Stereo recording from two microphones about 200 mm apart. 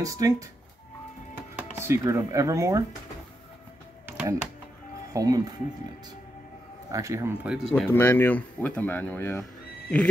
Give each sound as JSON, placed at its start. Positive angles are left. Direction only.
{"t": 0.0, "sound": "speech", "side_deg": -15}
{"t": 1.6, "sound": "speech", "side_deg": -10}
{"t": 5.1, "sound": "speech", "side_deg": -15}
{"t": 6.9, "sound": "speech", "side_deg": -15}
{"t": 7.7, "sound": "speech", "side_deg": 10}